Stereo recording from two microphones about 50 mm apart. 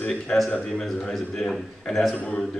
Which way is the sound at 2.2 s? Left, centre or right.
Left.